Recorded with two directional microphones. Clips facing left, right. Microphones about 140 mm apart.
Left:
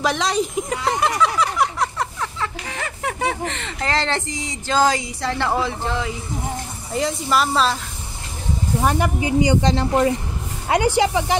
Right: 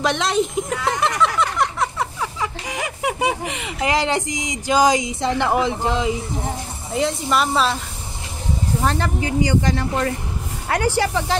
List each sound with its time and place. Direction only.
0.0 s speech: centre (ahead or behind); by 6.1 s 20° right (ahead or behind)
6.9 s speech: centre (ahead or behind)
8.8 s speech: 15° left (ahead or behind)